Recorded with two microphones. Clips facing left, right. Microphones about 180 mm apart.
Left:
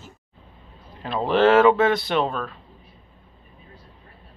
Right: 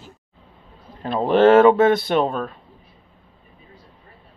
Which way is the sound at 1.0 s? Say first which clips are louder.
Right 4 dB; 40° right (ahead or behind).